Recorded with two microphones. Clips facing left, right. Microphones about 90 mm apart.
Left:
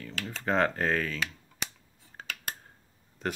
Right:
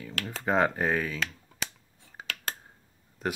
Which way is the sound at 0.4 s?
10° right (ahead or behind).